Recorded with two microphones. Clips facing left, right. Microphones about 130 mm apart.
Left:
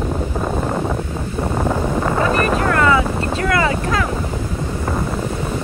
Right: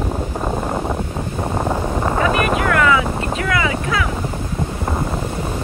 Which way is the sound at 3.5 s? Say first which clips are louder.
Left 2 dB; 40° left (ahead or behind).